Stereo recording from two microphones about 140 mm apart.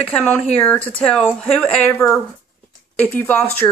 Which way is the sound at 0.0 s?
10° left (ahead or behind).